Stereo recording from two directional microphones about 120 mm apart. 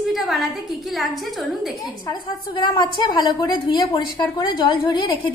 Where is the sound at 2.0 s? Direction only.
40° left (ahead or behind).